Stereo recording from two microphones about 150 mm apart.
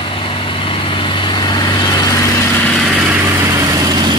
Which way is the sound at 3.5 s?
25° right (ahead or behind).